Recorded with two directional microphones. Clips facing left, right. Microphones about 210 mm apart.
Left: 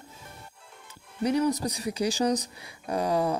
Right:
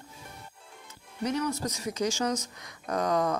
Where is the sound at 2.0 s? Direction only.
35° left (ahead or behind).